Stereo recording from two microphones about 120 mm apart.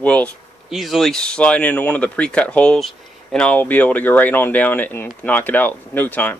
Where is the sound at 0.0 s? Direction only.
10° left (ahead or behind).